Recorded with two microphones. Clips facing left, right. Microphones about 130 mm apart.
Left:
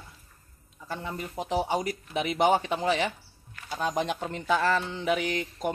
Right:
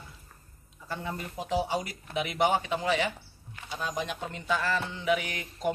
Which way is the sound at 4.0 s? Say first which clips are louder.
Left 5 dB; 30° left (ahead or behind).